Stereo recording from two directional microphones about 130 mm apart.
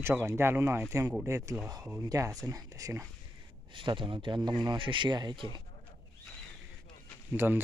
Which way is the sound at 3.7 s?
40° right (ahead or behind).